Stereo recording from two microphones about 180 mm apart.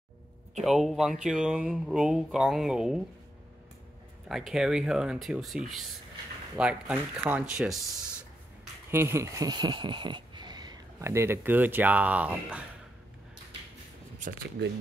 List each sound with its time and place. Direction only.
0.6 s speech: centre (ahead or behind)
4.3 s speech: centre (ahead or behind)
8.9 s speech: 15° right (ahead or behind)
14.2 s speech: 45° right (ahead or behind)